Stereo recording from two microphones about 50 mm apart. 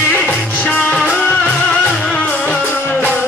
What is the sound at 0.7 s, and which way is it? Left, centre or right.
Music, left.